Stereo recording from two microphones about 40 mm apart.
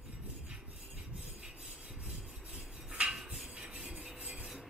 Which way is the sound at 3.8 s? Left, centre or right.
Centre.